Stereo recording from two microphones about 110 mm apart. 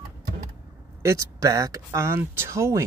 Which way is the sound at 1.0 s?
30° right (ahead or behind).